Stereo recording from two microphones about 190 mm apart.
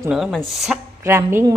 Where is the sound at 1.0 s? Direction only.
15° right (ahead or behind).